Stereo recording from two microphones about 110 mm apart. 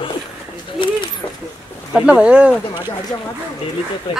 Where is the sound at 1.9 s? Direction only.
10° right (ahead or behind).